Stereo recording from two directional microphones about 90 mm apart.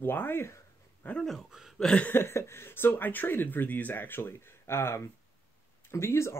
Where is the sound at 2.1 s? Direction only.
30° left (ahead or behind).